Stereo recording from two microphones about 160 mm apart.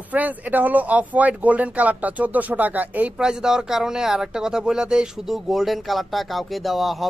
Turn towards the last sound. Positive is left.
turn(degrees=0)  # may be behind; listen again after turning